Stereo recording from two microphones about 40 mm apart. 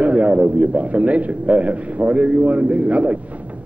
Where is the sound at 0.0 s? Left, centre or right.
Right.